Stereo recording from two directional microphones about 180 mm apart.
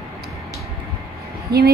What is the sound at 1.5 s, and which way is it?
Speech, 60° right (ahead or behind).